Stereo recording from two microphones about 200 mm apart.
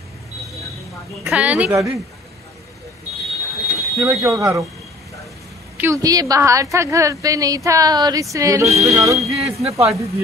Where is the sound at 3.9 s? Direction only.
15° right (ahead or behind).